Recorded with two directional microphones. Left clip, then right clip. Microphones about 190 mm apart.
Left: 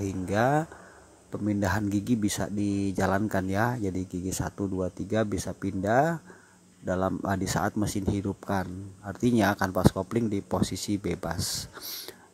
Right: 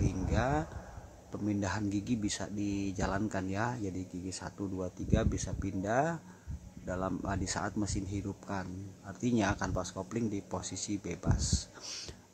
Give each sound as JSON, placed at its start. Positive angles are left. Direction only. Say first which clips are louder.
{"t": 0.0, "sound": "a sound", "louder": "left 8 dB", "side_deg": 35}
{"t": 1.3, "sound": "speech", "louder": "left 7 dB", "side_deg": 30}
{"t": 11.8, "sound": "beatboxing", "louder": "left 4 dB", "side_deg": 20}